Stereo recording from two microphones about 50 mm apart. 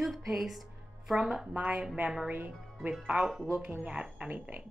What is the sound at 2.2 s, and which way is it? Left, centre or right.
Speech, right.